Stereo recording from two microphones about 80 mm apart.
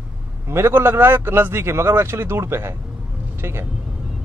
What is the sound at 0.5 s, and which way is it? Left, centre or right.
A man's voice, right.